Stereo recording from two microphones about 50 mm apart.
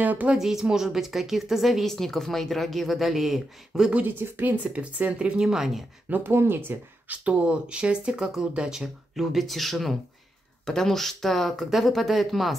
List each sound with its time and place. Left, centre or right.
0.0 s speech: right
0.3 s a woman's voice: centre
3.9 s speech: right
4.7 s speech: right
5.5 s speech: centre
6.0 s speech: right
6.3 s speech: right
7.1 s speech: right; by 12.5 s centre